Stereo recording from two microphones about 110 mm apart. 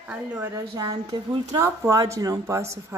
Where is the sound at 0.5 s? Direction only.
35° right (ahead or behind).